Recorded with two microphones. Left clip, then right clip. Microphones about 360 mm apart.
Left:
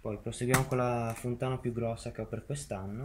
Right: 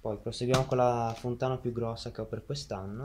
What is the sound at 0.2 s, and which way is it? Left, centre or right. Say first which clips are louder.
Speech: right 1 dB; centre.